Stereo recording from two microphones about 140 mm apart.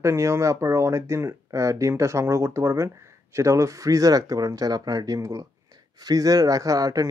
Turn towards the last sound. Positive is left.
turn(degrees=-25)  # may be behind; listen again after turning